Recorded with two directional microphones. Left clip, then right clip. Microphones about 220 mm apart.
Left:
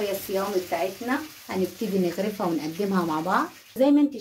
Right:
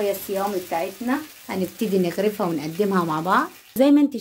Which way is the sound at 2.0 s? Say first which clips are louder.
Right 4 dB; 40° right (ahead or behind).